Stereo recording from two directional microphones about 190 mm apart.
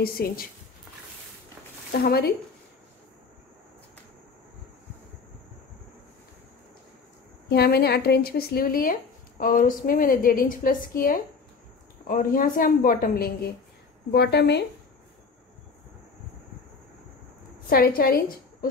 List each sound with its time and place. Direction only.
0.2 s a woman's voice: 50° left (ahead or behind)
2.0 s a woman's voice: 55° left (ahead or behind)
7.4 s a woman's voice: 55° left (ahead or behind)
14.1 s a woman's voice: 60° left (ahead or behind)
17.6 s a woman's voice: 50° left (ahead or behind)